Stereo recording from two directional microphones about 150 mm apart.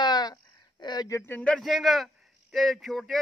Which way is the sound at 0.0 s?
30° left (ahead or behind).